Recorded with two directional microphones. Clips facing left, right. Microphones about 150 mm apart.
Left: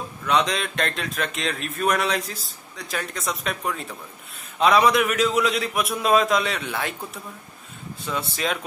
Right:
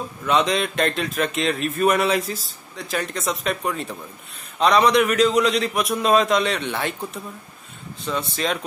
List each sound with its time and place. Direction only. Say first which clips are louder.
0.3 s speech: right 2 dB; centre (ahead or behind)
8.0 s speech: right 2 dB; 10° left (ahead or behind)